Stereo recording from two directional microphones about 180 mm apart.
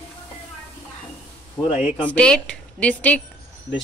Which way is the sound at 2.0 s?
5° left (ahead or behind).